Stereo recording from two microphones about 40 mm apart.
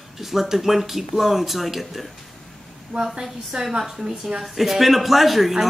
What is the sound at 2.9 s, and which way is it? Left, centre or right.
Speech, centre.